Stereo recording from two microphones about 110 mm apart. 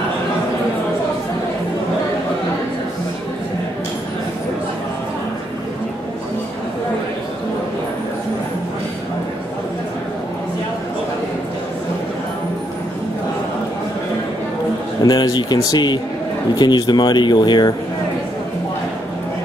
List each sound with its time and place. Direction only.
15.0 s speech: 40° left (ahead or behind)